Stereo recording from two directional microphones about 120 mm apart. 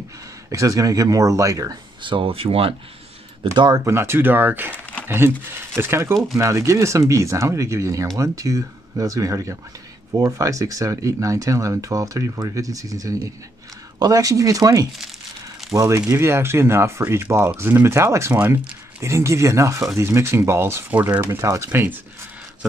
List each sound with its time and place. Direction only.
0.5 s speech: 30° right (ahead or behind); by 2.7 s 50° right (ahead or behind)
3.5 s speech: 35° right (ahead or behind)
3.8 s speech: 20° right (ahead or behind)
18.9 s speech: 25° right (ahead or behind)